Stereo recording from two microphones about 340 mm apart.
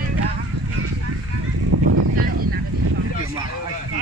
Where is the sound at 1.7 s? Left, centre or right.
Right.